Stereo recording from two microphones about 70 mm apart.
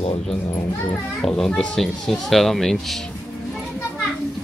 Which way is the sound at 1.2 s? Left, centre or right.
Centre.